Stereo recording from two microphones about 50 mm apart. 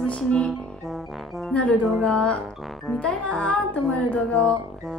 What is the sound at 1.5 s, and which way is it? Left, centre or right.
A woman's voice, left.